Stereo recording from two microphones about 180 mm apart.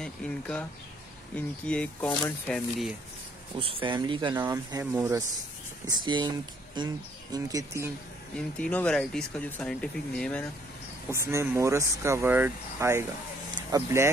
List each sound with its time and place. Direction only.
0.0 s speech: 5° left (ahead or behind)
3.5 s speech: 30° right (ahead or behind)
8.4 s speech: 5° left (ahead or behind)
11.1 s speech: 15° right (ahead or behind)